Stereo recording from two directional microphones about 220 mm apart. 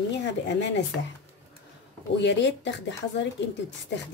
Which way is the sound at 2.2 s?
55° left (ahead or behind).